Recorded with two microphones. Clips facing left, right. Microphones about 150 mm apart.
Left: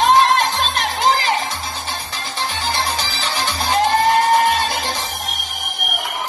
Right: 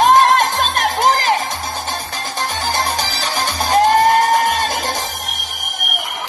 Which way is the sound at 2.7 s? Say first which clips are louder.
Right 2 dB; 45° right (ahead or behind).